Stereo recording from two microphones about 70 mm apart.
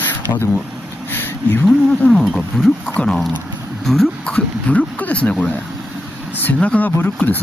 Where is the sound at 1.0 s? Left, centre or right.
Left.